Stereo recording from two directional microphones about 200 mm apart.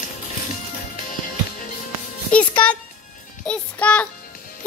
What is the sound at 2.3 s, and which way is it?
Music, 5° left (ahead or behind).